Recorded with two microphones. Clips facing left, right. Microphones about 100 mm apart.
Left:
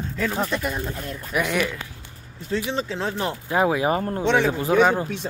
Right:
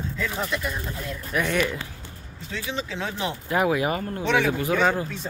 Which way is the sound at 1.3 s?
10° left (ahead or behind).